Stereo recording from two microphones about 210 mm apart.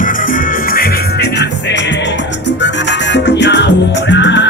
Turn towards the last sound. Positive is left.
turn(degrees=55)  # may be behind; listen again after turning